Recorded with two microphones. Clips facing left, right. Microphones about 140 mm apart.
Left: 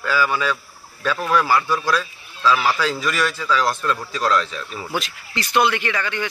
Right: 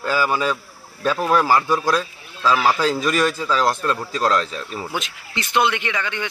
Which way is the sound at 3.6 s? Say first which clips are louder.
Right 1 dB; 35° right (ahead or behind).